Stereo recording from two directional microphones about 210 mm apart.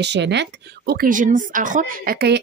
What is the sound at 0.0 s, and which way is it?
A woman's voice, 55° right (ahead or behind).